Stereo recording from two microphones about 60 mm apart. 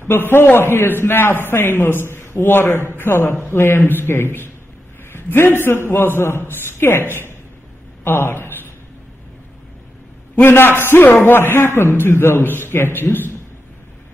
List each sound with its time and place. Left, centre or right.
0.0 s a man's voice: left
8.0 s a sound: left
10.3 s a man's voice: left